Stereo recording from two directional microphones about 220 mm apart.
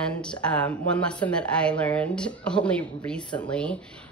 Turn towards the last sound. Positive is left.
turn(degrees=5)  # may be behind; listen again after turning